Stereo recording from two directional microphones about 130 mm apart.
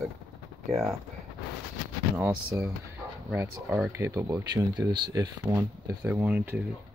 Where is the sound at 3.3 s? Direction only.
15° right (ahead or behind).